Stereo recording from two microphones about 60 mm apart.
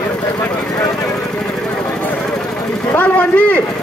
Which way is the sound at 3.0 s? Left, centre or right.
Left.